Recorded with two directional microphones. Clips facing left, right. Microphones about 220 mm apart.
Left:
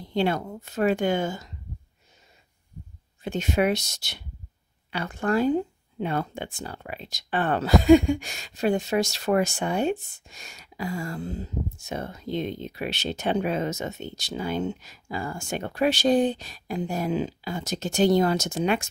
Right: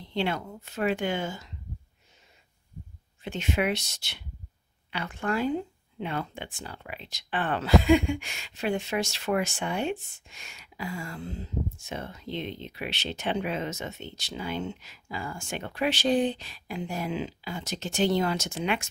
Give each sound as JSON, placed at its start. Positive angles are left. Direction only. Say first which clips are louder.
{"t": 0.0, "sound": "a sound", "louder": "left 5 dB", "side_deg": 40}
{"t": 0.7, "sound": "speech", "louder": "left 5 dB", "side_deg": 40}
{"t": 3.3, "sound": "speech", "louder": "left 4 dB", "side_deg": 40}